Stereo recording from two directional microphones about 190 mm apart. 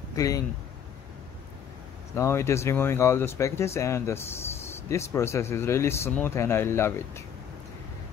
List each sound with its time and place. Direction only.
0.1 s speech: 15° left (ahead or behind)
2.1 s speech: 15° left (ahead or behind)